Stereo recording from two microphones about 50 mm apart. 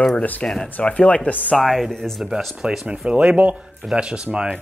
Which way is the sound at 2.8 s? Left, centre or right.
Right.